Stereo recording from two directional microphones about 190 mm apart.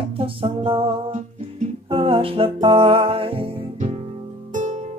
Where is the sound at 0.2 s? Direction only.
30° right (ahead or behind).